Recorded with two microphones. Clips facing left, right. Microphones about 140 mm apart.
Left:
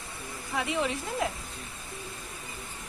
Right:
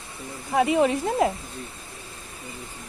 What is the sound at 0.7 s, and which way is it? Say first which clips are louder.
Speech: right 9 dB; 50° right (ahead or behind).